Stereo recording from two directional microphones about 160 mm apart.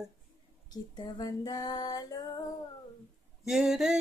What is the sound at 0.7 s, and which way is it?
Female singing, 25° left (ahead or behind).